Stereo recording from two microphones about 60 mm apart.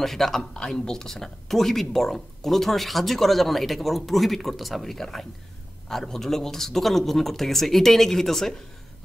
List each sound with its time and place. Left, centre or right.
0.0 s speech: centre